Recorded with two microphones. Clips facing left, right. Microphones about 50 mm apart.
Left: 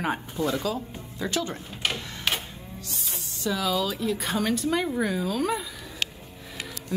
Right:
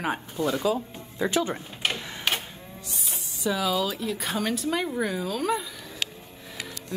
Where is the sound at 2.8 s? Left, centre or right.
Centre.